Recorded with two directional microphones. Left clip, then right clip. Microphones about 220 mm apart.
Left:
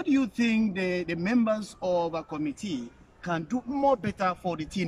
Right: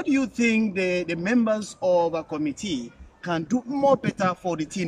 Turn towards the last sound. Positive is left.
turn(degrees=0)  # may be behind; listen again after turning